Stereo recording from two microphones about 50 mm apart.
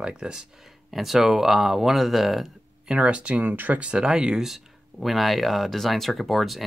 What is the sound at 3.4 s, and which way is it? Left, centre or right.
Speech, right.